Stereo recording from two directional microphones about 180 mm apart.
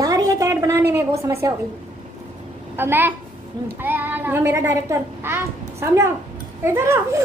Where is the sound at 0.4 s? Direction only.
20° right (ahead or behind).